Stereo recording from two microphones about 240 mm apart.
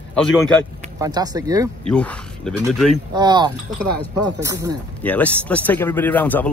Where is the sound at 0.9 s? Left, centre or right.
Centre.